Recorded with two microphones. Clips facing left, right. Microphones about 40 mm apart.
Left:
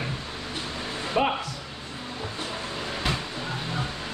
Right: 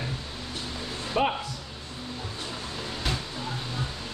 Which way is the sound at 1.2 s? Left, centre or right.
Centre.